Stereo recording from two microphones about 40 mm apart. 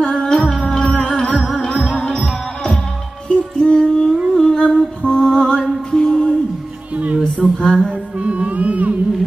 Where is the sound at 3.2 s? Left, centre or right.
Left.